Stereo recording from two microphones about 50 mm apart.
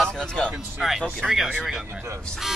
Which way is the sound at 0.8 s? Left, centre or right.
Centre.